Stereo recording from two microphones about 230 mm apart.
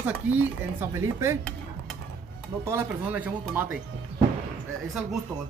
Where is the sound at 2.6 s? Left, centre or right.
Centre.